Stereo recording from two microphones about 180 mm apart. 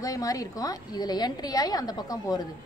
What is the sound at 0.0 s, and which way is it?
A woman's voice, 20° left (ahead or behind).